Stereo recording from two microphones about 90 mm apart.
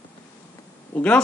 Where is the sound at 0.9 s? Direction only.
15° left (ahead or behind).